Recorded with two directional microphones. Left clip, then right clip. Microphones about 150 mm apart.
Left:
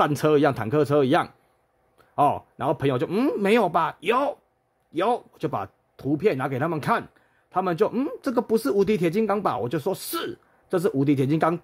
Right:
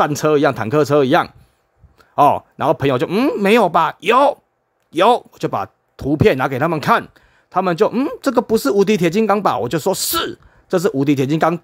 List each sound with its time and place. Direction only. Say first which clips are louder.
0.0 s speech: right 5 dB; 15° right (ahead or behind)